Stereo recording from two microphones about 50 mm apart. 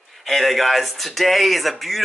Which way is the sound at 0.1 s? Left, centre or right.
Centre.